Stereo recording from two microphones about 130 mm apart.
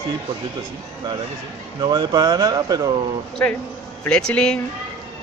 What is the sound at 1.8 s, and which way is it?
Speech, 35° right (ahead or behind).